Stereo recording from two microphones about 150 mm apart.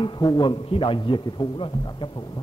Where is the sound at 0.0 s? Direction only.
30° left (ahead or behind).